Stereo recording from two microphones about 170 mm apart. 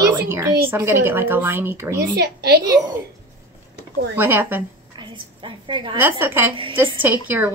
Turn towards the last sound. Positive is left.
turn(degrees=-10)  # may be behind; listen again after turning